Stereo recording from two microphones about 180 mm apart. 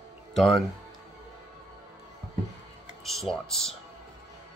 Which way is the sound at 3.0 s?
Centre (ahead or behind).